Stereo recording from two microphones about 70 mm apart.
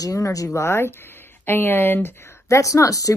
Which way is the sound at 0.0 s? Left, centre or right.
Left.